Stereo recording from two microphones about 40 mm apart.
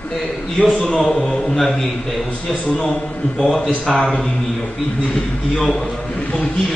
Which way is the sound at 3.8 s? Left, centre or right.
Centre.